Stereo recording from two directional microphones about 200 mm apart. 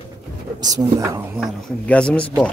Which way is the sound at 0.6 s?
20° right (ahead or behind).